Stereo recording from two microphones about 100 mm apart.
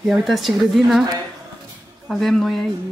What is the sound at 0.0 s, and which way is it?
A woman's voice, centre (ahead or behind).